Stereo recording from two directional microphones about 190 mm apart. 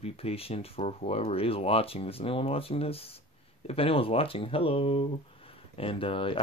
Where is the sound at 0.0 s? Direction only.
30° left (ahead or behind).